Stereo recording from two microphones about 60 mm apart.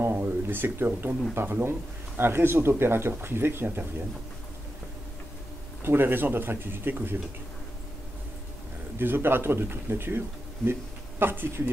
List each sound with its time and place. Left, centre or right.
0.1 s a sound: right
1.3 s speech: right
5.9 s speech: right
8.9 s speech: right